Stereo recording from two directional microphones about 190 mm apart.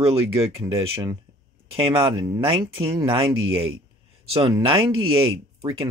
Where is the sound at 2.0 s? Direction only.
25° right (ahead or behind).